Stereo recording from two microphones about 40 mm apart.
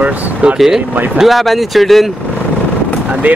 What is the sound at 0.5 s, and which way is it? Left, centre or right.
Speech, centre.